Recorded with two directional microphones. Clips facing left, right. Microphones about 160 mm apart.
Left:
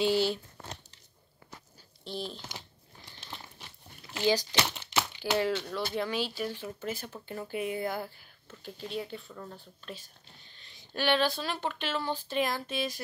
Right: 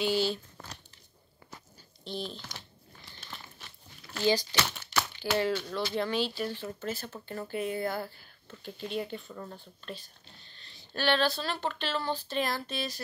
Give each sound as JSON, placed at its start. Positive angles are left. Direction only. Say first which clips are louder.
{"t": 0.0, "sound": "speech", "louder": "left 2 dB", "side_deg": 25}
{"t": 2.0, "sound": "speech", "louder": "even", "side_deg": 5}
{"t": 4.1, "sound": "speech", "louder": "even", "side_deg": 15}
{"t": 8.6, "sound": "speech", "louder": "right 2 dB", "side_deg": 0}
{"t": 9.8, "sound": "speech", "louder": "right 2 dB", "side_deg": 10}